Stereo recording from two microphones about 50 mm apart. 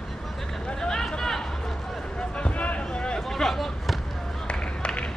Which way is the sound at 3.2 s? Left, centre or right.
Centre.